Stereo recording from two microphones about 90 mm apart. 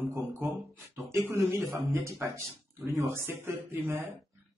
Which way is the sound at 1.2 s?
35° right (ahead or behind).